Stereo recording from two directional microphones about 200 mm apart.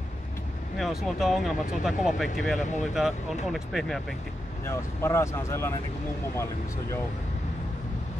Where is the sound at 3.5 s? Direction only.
Centre (ahead or behind).